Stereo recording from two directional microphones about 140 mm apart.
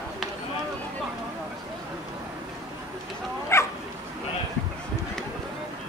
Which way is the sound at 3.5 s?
20° left (ahead or behind).